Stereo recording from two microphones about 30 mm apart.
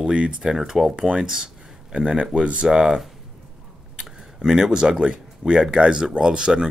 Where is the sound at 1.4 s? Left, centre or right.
Right.